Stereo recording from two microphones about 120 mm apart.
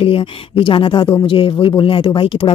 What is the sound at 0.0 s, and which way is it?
Speech, 50° left (ahead or behind).